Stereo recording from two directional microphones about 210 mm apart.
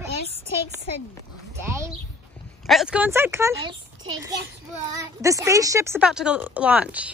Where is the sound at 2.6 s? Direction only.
Centre (ahead or behind).